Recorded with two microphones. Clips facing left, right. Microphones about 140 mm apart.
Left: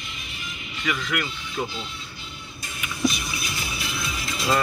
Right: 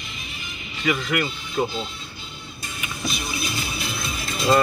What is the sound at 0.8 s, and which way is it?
Speech, 25° right (ahead or behind).